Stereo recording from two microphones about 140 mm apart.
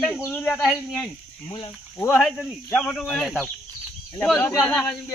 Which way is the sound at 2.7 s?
5° left (ahead or behind).